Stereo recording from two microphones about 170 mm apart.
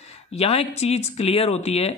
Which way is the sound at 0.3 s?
35° left (ahead or behind).